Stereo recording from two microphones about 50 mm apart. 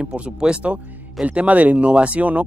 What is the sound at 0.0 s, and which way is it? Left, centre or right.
Speech, right.